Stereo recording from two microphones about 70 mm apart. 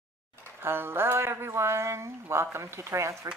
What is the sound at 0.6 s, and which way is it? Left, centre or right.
Speech, right.